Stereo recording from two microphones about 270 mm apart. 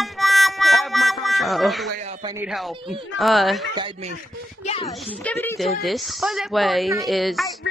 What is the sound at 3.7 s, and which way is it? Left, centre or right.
Speech, centre.